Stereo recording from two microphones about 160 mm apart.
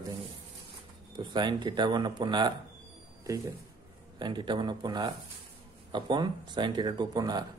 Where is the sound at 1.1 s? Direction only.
30° right (ahead or behind).